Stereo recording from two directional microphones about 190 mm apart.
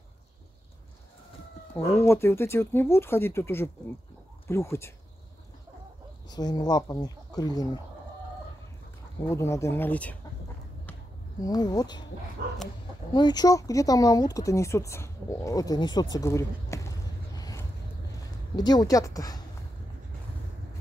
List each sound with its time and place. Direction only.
2.0 s speech: 15° left (ahead or behind)
6.2 s speech: 20° left (ahead or behind)
9.3 s speech: 15° left (ahead or behind)
11.4 s speech: 20° left (ahead or behind)
13.1 s speech: 20° left (ahead or behind)
17.4 s vehicle: 20° left (ahead or behind)
18.6 s speech: 20° left (ahead or behind)